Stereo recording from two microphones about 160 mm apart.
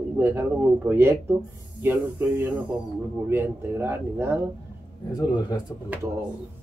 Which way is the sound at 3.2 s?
15° right (ahead or behind).